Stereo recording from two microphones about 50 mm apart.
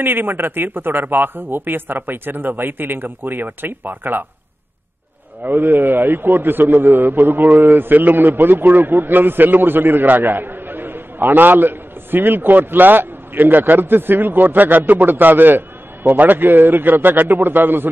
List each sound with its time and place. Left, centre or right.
0.0 s a man's voice: right
5.4 s a man's voice: right